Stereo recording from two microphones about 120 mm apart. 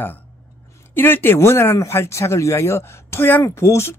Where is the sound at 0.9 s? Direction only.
15° left (ahead or behind).